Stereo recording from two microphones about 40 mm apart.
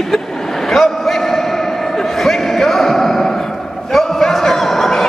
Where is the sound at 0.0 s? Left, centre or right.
Centre.